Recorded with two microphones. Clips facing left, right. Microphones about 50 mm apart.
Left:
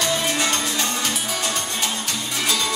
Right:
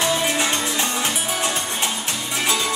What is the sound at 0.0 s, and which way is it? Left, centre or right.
Music, centre.